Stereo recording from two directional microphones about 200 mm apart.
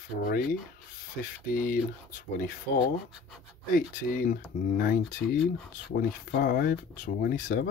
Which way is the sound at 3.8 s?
45° left (ahead or behind).